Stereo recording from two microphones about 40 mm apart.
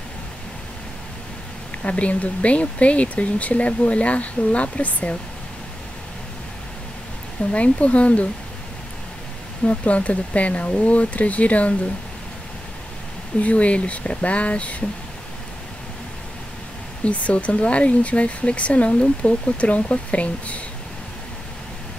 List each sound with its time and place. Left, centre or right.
1.8 s speech: left
7.5 s speech: left
9.7 s speech: left
13.4 s speech: left
17.0 s speech: left